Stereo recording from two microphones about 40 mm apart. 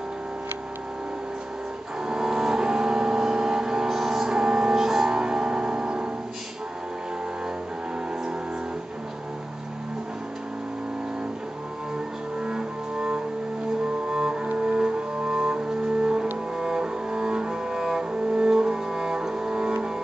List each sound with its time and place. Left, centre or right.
2.0 s vehicle: centre
12.4 s cello: centre
14.6 s music: right
16.5 s cello: centre